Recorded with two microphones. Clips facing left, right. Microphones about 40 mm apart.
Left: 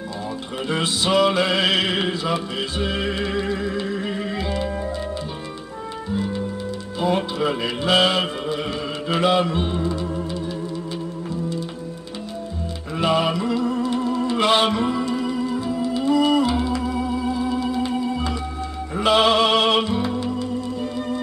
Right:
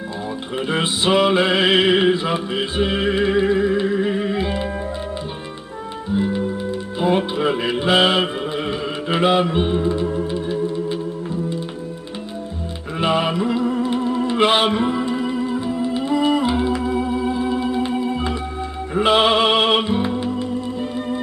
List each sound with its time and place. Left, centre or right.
0.7 s music: right
6.1 s music: right
12.9 s music: right